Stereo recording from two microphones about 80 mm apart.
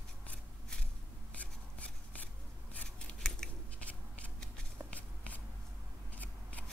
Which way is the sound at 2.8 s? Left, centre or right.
Centre.